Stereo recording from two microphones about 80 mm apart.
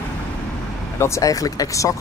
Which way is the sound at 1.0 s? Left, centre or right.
Left.